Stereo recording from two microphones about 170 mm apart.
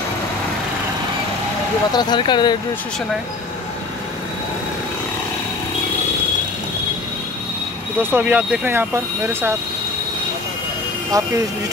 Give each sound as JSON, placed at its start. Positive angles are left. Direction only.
{"t": 1.9, "sound": "speech", "side_deg": 25}
{"t": 8.0, "sound": "speech", "side_deg": -10}
{"t": 11.1, "sound": "speech", "side_deg": -20}